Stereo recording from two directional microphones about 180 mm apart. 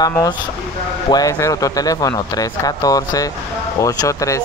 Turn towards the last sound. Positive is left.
turn(degrees=20)  # may be behind; listen again after turning